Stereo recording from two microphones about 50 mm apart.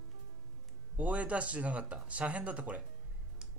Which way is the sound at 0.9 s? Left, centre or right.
Right.